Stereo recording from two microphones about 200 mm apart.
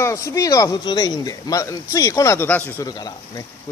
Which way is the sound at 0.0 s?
15° left (ahead or behind).